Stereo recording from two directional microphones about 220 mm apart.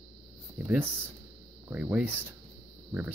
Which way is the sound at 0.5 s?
10° right (ahead or behind).